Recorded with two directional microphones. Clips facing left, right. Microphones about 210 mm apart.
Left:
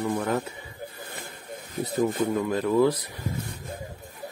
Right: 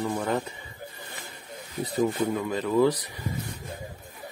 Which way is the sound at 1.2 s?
55° left (ahead or behind).